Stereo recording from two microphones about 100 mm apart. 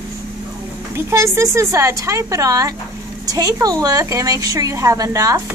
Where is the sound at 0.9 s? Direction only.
30° right (ahead or behind).